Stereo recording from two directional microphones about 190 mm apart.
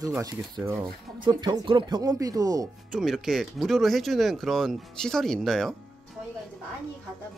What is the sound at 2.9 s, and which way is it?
Speech, centre (ahead or behind).